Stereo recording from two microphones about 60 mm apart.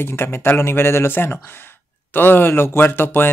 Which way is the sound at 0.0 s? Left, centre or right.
Left.